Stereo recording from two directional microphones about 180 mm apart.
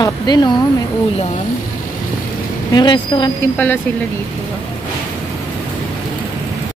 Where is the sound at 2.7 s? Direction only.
25° left (ahead or behind).